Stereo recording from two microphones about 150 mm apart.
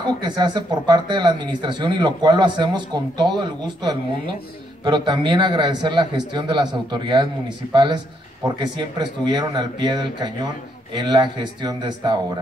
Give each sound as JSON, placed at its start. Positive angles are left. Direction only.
{"t": 0.0, "sound": "a man's voice", "side_deg": -30}